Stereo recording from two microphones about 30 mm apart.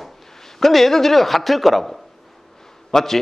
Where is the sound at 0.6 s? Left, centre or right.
Centre.